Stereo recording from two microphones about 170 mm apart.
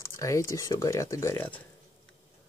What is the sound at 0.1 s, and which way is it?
Speech, 15° left (ahead or behind).